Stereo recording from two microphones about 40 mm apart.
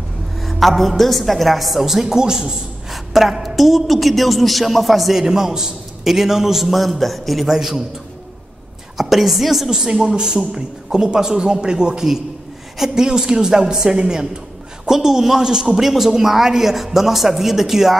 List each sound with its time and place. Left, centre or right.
0.4 s a woman's voice: centre
2.9 s a woman's voice: centre
5.2 s a man's voice: centre
7.4 s a man's voice: centre
8.9 s a woman's voice: centre
9.7 s a man's voice: centre